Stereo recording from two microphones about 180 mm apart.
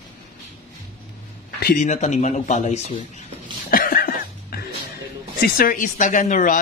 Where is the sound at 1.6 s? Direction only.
60° left (ahead or behind).